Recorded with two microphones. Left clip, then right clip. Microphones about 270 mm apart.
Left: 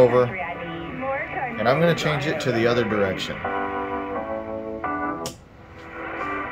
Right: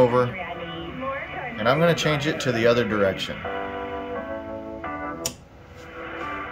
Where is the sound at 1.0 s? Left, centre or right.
Centre.